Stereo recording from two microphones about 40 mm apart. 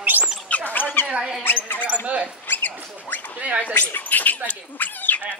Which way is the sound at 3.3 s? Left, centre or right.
Right.